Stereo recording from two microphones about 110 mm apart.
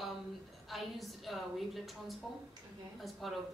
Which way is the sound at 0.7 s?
Centre (ahead or behind).